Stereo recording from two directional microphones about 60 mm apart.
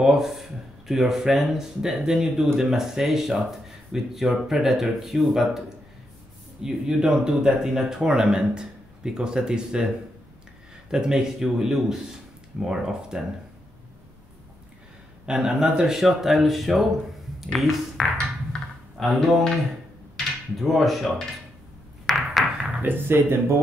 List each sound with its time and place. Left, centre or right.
0.0 s speech: centre
6.6 s speech: centre
10.9 s speech: centre
15.2 s speech: centre
18.5 s computer keyboard: centre
18.9 s speech: centre
20.5 s speech: centre
22.0 s a sound: centre
22.8 s speech: right